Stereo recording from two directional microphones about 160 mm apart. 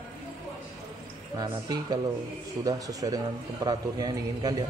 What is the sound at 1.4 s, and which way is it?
A man's voice, 25° right (ahead or behind).